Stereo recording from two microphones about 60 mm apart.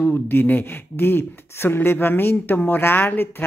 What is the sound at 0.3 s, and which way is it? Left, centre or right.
Speech, left.